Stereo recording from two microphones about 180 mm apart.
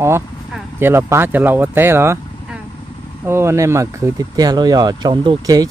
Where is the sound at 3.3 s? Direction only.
15° right (ahead or behind).